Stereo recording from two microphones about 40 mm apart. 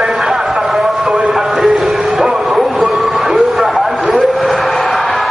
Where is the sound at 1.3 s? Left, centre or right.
Centre.